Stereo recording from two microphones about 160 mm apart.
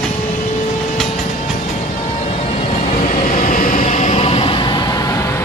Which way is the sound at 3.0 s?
60° left (ahead or behind).